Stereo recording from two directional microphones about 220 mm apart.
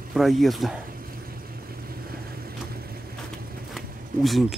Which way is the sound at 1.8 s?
40° right (ahead or behind).